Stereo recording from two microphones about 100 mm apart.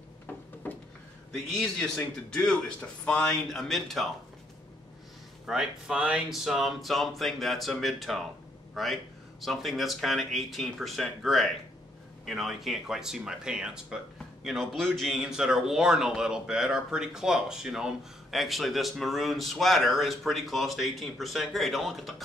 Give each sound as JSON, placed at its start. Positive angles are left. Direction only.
{"t": 0.3, "sound": "a sound", "side_deg": 20}
{"t": 1.5, "sound": "a man's voice", "side_deg": 5}
{"t": 5.5, "sound": "speech", "side_deg": -5}